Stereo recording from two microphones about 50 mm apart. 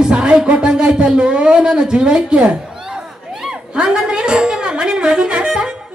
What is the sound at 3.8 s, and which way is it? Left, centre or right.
Speech, centre.